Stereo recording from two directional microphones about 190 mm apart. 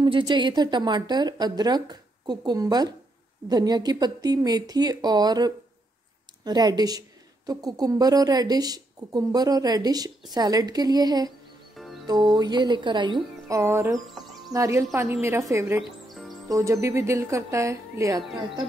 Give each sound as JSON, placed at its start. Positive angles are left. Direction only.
{"t": 0.0, "sound": "speech", "side_deg": -25}
{"t": 11.7, "sound": "music", "side_deg": 0}
{"t": 12.1, "sound": "speech", "side_deg": -20}